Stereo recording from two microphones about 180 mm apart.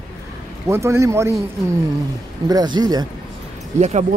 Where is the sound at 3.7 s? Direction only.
40° right (ahead or behind).